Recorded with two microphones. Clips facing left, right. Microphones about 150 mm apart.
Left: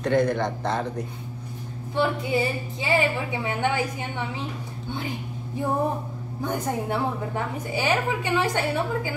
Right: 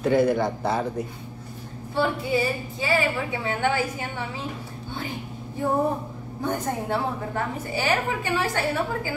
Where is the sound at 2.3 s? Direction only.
20° left (ahead or behind).